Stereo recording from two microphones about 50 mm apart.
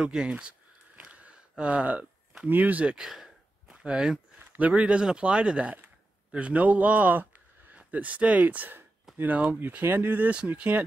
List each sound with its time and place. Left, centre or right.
0.0 s a sound: centre
1.6 s a man's voice: right
3.0 s gasp: centre
4.6 s a man's voice: right